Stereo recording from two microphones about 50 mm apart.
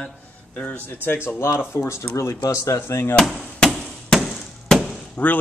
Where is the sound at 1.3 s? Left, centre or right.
Left.